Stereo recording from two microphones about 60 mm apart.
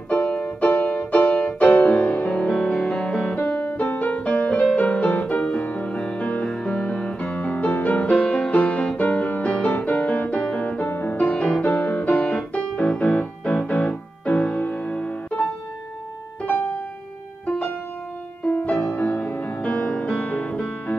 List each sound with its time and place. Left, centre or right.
0.1 s music: left
10.9 s music: left
11.2 s music: centre
11.6 s music: left
16.4 s music: left
18.4 s music: left